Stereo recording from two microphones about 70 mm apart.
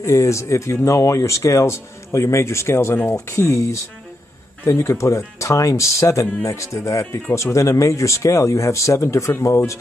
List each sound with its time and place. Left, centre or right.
0.0 s speech: left